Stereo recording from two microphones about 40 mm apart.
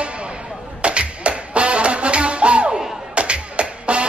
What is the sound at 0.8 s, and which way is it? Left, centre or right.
Music, right.